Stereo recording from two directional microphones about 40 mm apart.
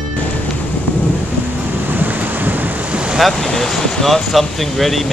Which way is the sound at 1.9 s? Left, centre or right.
Right.